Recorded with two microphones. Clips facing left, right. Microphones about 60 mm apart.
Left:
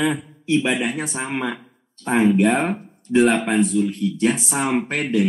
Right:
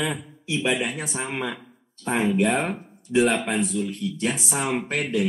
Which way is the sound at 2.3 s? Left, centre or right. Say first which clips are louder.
Left 4 dB; centre.